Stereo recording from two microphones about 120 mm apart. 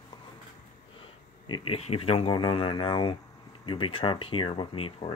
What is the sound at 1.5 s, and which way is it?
Speech, 50° left (ahead or behind).